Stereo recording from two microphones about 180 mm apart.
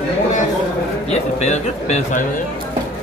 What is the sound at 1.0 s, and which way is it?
Speech, 40° left (ahead or behind).